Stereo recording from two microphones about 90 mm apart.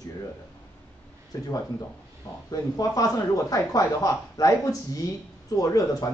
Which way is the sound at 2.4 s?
45° left (ahead or behind).